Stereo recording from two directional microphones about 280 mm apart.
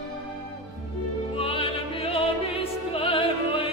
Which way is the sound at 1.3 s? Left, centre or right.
Left.